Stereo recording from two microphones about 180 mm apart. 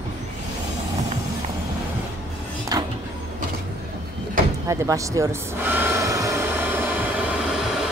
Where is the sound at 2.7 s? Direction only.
20° right (ahead or behind).